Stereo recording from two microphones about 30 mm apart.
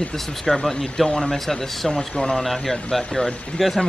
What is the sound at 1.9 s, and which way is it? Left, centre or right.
Speech, left.